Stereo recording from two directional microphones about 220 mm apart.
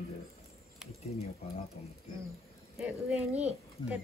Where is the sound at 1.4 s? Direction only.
30° left (ahead or behind).